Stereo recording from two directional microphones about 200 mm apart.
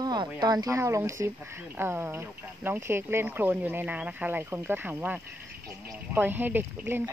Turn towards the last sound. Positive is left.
turn(degrees=-10)  # may be behind; listen again after turning